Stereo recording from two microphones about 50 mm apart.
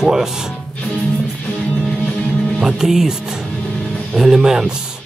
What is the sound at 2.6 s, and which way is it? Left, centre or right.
Speech, centre.